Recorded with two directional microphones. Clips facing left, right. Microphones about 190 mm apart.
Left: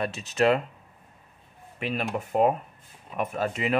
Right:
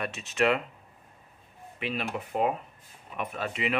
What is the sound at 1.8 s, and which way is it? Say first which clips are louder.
Speech: left 3 dB; 45° left (ahead or behind).